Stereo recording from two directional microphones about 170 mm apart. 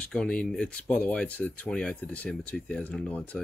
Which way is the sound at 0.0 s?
5° left (ahead or behind).